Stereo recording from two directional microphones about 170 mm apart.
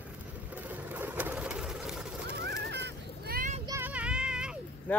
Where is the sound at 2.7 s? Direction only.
75° right (ahead or behind).